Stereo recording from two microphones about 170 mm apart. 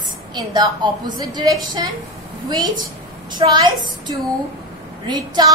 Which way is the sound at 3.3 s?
25° right (ahead or behind).